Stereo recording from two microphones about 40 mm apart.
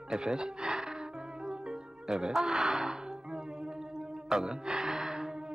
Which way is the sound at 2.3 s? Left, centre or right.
Centre.